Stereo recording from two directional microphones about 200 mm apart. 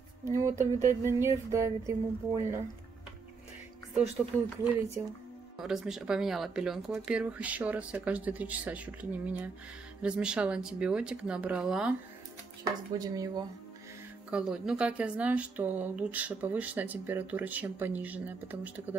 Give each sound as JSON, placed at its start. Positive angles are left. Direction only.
{"t": 0.2, "sound": "a woman's voice", "side_deg": -15}
{"t": 5.6, "sound": "a woman's voice", "side_deg": 0}
{"t": 12.9, "sound": "speech", "side_deg": -20}
{"t": 14.3, "sound": "a woman's voice", "side_deg": -5}